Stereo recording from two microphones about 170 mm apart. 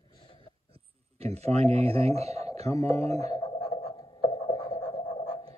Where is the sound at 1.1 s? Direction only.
40° right (ahead or behind).